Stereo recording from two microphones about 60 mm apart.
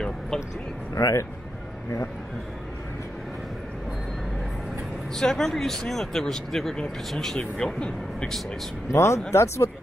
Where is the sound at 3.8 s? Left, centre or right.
Centre.